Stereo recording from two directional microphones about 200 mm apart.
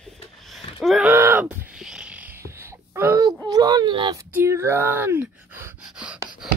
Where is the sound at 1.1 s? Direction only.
10° right (ahead or behind).